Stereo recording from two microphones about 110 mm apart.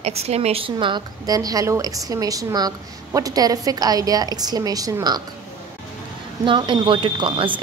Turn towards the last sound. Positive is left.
turn(degrees=-50)  # may be behind; listen again after turning